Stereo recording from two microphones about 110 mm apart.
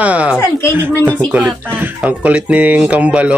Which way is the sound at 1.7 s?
20° right (ahead or behind).